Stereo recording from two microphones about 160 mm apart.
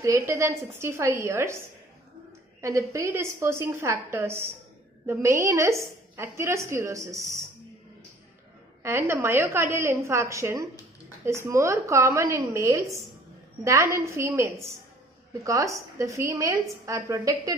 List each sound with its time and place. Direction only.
0.0 s a woman's voice: 15° right (ahead or behind)
2.6 s a woman's voice: 20° right (ahead or behind)
8.8 s a woman's voice: 15° right (ahead or behind)